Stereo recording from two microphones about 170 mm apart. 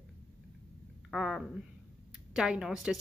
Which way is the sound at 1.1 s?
Centre (ahead or behind).